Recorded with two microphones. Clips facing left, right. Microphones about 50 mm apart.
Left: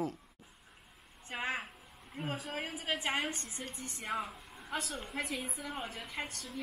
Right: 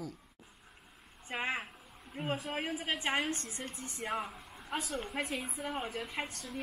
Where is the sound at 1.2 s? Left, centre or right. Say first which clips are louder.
Right 1 dB; centre.